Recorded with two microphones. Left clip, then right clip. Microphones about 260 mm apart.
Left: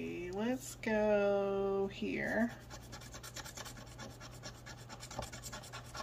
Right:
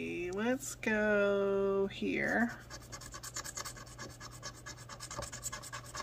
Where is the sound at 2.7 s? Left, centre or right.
Right.